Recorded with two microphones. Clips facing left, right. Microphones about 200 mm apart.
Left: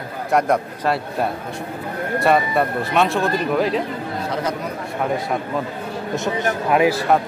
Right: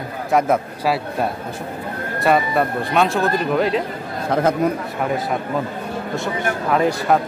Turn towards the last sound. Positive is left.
turn(degrees=5)  # may be behind; listen again after turning